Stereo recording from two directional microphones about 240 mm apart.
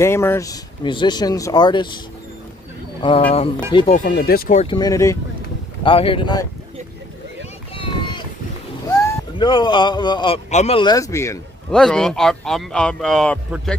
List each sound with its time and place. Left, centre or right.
0.0 s speech: centre
3.3 s speech: left
4.6 s speech: centre
7.7 s a sound: left
8.9 s speech: centre